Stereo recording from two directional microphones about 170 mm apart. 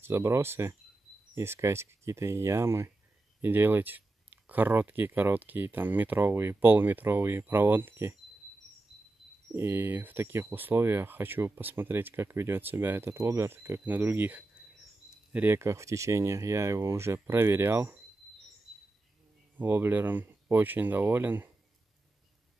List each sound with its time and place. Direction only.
0.0 s speech: 15° right (ahead or behind)
9.5 s speech: 10° right (ahead or behind)
19.6 s speech: 10° right (ahead or behind)